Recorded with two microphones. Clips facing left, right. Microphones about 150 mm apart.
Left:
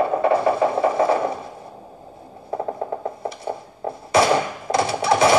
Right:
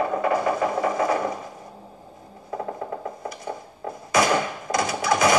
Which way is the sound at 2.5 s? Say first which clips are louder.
Left 4 dB; 30° left (ahead or behind).